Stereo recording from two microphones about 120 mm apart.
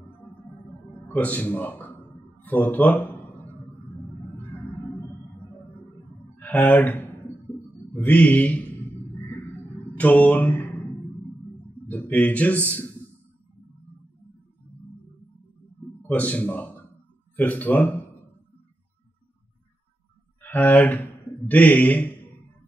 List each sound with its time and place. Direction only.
1.0 s a sound: 15° left (ahead or behind)
4.4 s music: 20° left (ahead or behind)
6.4 s a man's voice: 15° left (ahead or behind)
7.9 s a sound: 15° left (ahead or behind)
9.9 s mantra: 15° left (ahead or behind)
11.9 s a man's voice: 15° left (ahead or behind)
16.1 s a man's voice: 15° left (ahead or behind)
20.4 s speech: 15° left (ahead or behind)